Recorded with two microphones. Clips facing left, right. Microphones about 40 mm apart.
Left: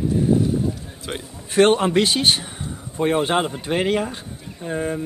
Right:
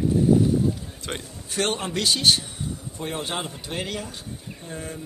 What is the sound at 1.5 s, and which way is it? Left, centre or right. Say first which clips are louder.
A man's voice: left 11 dB; left.